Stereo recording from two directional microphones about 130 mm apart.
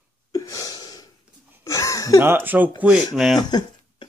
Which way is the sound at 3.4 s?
35° left (ahead or behind).